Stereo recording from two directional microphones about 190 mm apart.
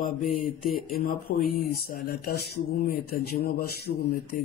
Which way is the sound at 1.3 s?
55° left (ahead or behind).